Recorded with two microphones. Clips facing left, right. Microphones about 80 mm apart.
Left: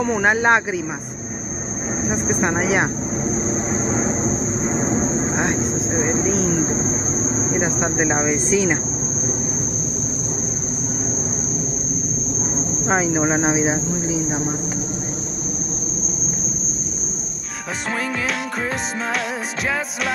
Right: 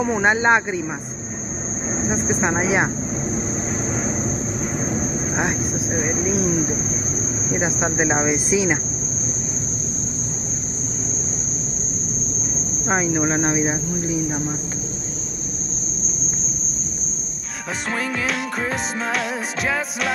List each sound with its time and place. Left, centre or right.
0.0 s speech: centre
2.0 s speech: centre
3.3 s vehicle: centre
5.9 s speech: left
7.5 s speech: centre
12.8 s speech: centre